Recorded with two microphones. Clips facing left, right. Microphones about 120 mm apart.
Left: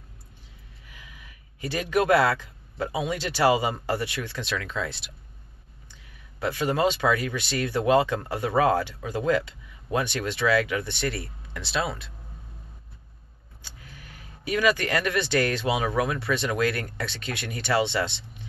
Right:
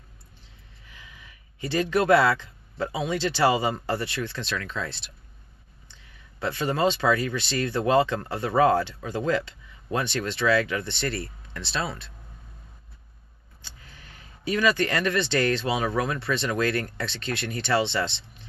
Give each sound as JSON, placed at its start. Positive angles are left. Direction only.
{"t": 0.8, "sound": "speech", "side_deg": 10}
{"t": 6.4, "sound": "speech", "side_deg": 10}
{"t": 13.6, "sound": "speech", "side_deg": 10}